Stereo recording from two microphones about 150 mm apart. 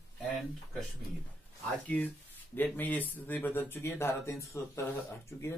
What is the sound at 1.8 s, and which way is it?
Speech, 10° left (ahead or behind).